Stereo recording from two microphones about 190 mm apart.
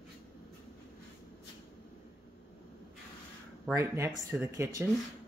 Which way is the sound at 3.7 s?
15° right (ahead or behind).